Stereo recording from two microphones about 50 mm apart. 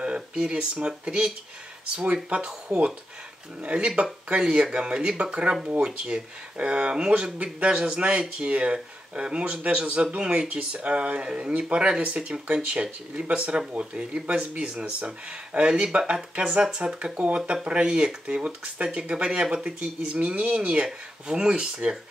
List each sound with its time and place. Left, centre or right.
0.0 s speech: centre
3.6 s speech: right